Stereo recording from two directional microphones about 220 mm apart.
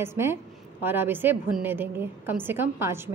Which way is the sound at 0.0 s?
10° right (ahead or behind).